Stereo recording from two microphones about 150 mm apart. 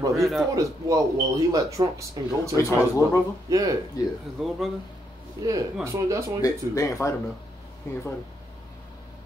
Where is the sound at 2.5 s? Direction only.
20° left (ahead or behind).